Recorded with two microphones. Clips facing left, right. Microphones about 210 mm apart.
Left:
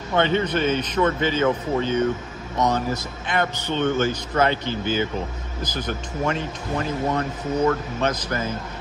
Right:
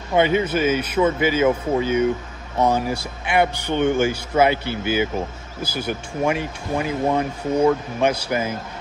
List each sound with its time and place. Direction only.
0.1 s speech: 10° right (ahead or behind)